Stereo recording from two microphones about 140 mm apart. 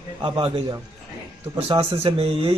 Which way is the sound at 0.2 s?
35° right (ahead or behind).